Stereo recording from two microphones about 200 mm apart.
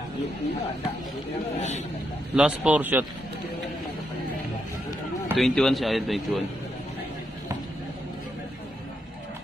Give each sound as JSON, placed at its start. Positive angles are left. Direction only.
{"t": 1.5, "sound": "a man's voice", "side_deg": 35}
{"t": 2.3, "sound": "speech", "side_deg": -5}
{"t": 5.3, "sound": "a man's voice", "side_deg": 5}